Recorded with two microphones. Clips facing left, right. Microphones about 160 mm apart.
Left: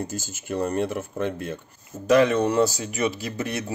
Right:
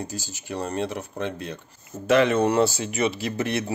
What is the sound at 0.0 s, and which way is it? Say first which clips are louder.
Speech: left 2 dB; 50° left (ahead or behind).